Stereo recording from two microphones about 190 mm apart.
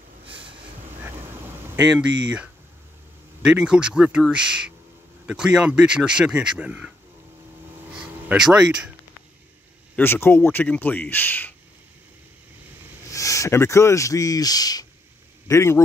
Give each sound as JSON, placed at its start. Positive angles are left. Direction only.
{"t": 0.3, "sound": "train", "side_deg": -30}
{"t": 2.0, "sound": "speech", "side_deg": -5}
{"t": 8.0, "sound": "speech", "side_deg": -5}
{"t": 9.9, "sound": "speech", "side_deg": 10}
{"t": 13.1, "sound": "a man's voice", "side_deg": 15}